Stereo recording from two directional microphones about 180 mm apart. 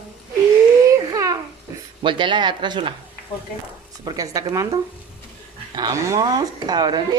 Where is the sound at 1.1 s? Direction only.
20° right (ahead or behind).